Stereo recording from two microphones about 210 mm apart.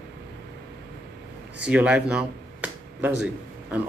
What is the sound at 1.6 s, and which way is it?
Speech, 5° right (ahead or behind).